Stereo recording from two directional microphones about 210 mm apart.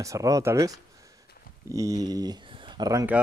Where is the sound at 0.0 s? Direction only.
15° right (ahead or behind).